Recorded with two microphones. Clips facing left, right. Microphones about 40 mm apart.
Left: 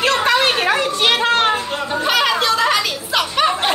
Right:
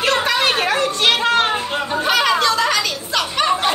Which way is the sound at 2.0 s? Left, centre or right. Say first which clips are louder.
Even; centre.